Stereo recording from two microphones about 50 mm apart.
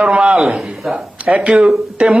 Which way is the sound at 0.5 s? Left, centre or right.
Centre.